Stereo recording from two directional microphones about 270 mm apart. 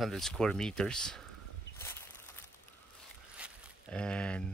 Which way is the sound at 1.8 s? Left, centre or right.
Centre.